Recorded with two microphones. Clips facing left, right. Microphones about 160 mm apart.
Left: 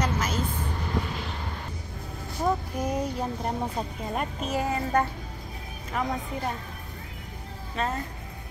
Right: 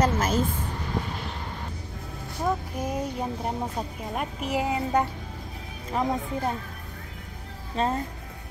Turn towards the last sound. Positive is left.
turn(degrees=-30)  # may be behind; listen again after turning